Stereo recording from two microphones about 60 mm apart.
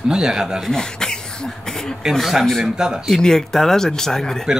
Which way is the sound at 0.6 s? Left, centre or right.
Centre.